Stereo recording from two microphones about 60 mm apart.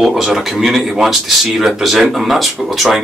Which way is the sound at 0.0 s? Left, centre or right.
Centre.